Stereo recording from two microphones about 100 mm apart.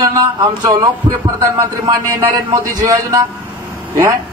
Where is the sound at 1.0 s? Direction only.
50° right (ahead or behind).